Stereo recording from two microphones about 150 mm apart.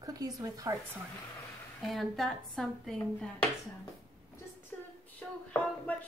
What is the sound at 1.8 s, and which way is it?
A woman's voice, centre (ahead or behind).